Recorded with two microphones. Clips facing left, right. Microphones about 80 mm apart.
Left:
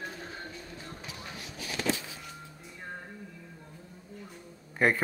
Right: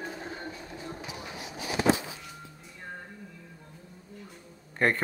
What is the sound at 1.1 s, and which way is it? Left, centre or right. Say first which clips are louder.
Printer: right 3 dB; centre.